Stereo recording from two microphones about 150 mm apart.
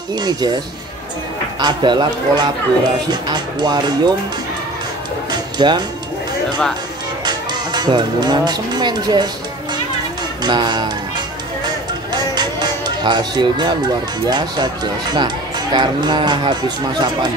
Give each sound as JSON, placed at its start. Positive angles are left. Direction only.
{"t": 0.1, "sound": "speech", "side_deg": -30}
{"t": 1.6, "sound": "speech", "side_deg": -30}
{"t": 5.3, "sound": "music", "side_deg": -30}
{"t": 7.2, "sound": "speech", "side_deg": -30}
{"t": 10.4, "sound": "music", "side_deg": -30}
{"t": 14.2, "sound": "speech", "side_deg": -25}